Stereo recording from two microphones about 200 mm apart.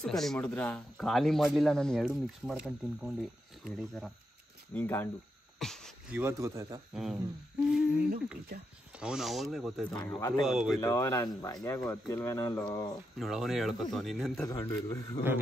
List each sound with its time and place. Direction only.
0.0 s speech: centre (ahead or behind)
5.6 s a sound: centre (ahead or behind)
6.1 s a man's voice: 15° right (ahead or behind)
6.9 s speech: centre (ahead or behind)
10.8 s speech: 15° left (ahead or behind)
13.2 s speech: centre (ahead or behind)
14.5 s speech: 15° left (ahead or behind)